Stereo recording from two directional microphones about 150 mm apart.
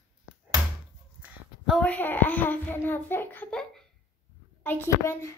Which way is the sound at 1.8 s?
10° left (ahead or behind).